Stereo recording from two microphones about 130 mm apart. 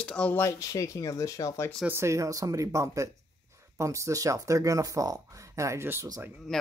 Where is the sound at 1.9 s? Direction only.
20° right (ahead or behind).